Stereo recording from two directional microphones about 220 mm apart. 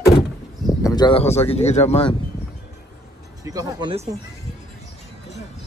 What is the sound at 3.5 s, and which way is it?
Speech, 25° right (ahead or behind).